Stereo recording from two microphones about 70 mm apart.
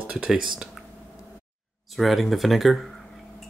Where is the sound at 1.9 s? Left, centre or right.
Centre.